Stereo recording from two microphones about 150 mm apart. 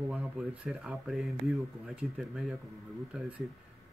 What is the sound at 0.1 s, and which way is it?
Speech, 5° right (ahead or behind).